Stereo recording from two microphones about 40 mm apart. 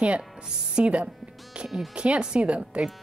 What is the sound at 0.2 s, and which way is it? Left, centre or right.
A woman's voice, right.